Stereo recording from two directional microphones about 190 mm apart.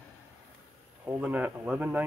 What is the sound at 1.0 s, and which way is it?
Speech, 10° right (ahead or behind).